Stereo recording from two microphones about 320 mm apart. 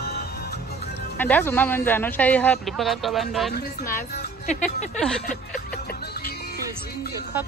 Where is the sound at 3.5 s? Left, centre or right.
Left.